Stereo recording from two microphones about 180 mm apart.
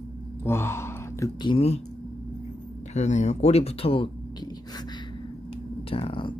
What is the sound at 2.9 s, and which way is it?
Speech, 40° left (ahead or behind).